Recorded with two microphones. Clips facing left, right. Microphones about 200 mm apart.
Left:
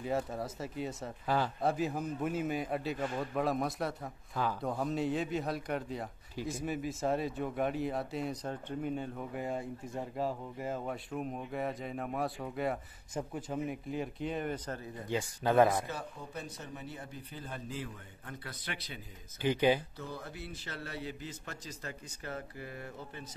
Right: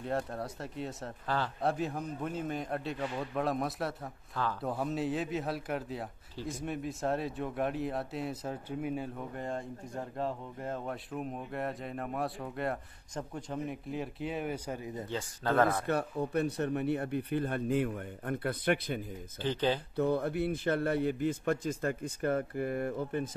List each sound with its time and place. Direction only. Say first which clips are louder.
0.0 s speech: even; centre (ahead or behind)
1.2 s speech: left 2 dB; 10° left (ahead or behind)
1.6 s speech: even; centre (ahead or behind)
9.3 s speech: left 1 dB; 5° left (ahead or behind); by 14.9 s 10° right (ahead or behind)
15.0 s speech: left 3 dB; 15° left (ahead or behind)
15.9 s speech: right 11 dB; 65° right (ahead or behind)
19.4 s speech: left 3 dB; 10° left (ahead or behind)
20.0 s a man's voice: right 14 dB; 60° right (ahead or behind)